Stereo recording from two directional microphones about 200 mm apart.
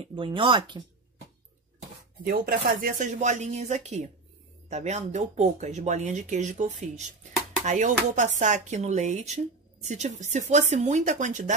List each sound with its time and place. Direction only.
0.0 s speech: 25° right (ahead or behind)
2.2 s speech: 50° right (ahead or behind)